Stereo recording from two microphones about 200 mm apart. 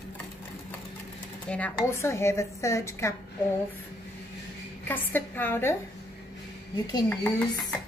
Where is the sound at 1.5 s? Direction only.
10° left (ahead or behind).